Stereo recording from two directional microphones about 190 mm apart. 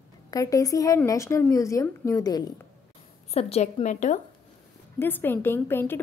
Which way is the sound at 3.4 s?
35° left (ahead or behind).